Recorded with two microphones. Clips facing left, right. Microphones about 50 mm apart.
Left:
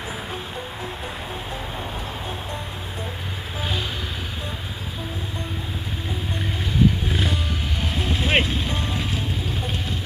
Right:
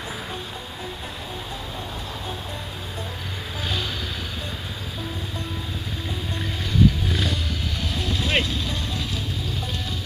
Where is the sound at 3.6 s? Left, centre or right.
Centre.